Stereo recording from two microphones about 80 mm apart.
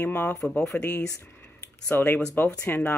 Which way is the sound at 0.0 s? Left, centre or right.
Left.